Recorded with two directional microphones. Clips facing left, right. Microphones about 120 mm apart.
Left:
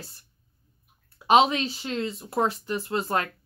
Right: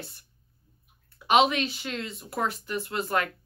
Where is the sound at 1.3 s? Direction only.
30° left (ahead or behind).